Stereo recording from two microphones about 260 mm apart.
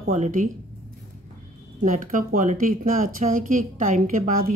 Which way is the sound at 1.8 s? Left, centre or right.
Right.